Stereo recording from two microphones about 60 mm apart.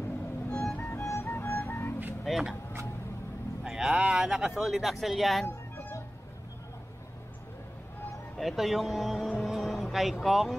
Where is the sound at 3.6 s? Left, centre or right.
Centre.